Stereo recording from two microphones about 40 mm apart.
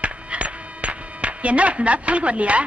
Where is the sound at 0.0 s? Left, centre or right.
Right.